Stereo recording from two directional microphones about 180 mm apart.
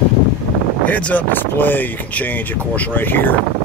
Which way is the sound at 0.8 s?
10° left (ahead or behind).